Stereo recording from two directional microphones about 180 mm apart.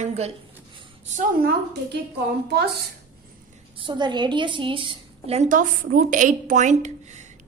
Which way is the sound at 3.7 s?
25° right (ahead or behind).